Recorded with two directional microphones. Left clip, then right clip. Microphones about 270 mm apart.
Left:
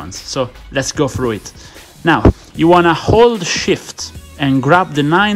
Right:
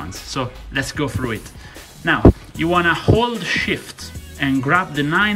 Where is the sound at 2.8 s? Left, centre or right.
Centre.